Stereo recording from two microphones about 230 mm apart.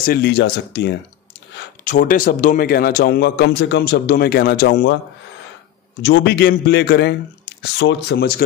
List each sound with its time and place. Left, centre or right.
0.0 s a man's voice: left
1.9 s a man's voice: left
6.0 s a man's voice: left